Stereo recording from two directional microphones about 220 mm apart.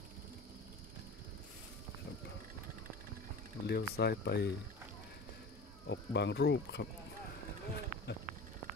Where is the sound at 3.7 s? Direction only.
45° left (ahead or behind).